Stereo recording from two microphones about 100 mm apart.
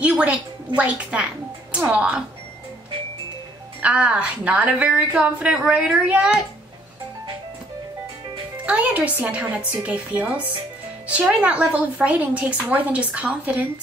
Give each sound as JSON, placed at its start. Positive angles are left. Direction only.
{"t": 0.7, "sound": "a woman's voice", "side_deg": -10}
{"t": 3.8, "sound": "a woman's voice", "side_deg": -10}
{"t": 8.6, "sound": "a woman's voice", "side_deg": -15}